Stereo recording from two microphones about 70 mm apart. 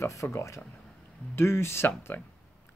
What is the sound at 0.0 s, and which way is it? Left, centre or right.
Speech, left.